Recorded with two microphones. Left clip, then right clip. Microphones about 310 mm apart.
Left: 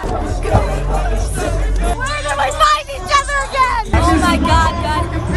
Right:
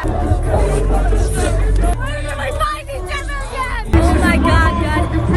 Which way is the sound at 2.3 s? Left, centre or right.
Centre.